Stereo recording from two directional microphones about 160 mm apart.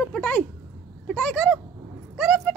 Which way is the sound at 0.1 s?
5° left (ahead or behind).